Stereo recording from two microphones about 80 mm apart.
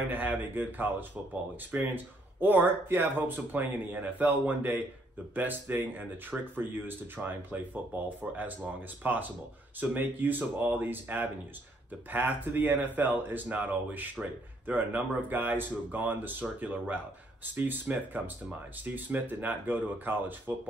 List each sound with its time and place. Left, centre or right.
0.1 s speech: right